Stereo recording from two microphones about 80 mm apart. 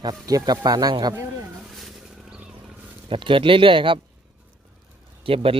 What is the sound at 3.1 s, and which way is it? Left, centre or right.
Speech, right.